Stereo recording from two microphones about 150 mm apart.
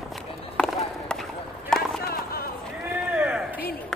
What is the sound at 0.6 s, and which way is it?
Run, 5° left (ahead or behind).